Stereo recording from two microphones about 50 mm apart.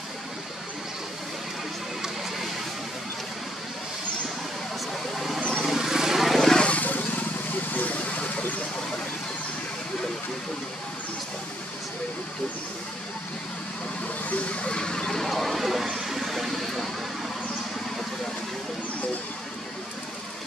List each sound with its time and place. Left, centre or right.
5.1 s a sound: centre
5.4 s vehicle: centre
5.7 s vehicle: centre
6.3 s vehicle: centre
6.6 s vehicle: left
14.3 s a sound: left; by 16.9 s centre